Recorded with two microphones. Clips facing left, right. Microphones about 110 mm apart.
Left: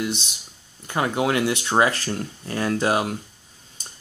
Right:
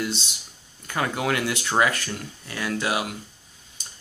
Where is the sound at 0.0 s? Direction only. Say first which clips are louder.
Left 2 dB; 20° left (ahead or behind); by 3.2 s 40° left (ahead or behind).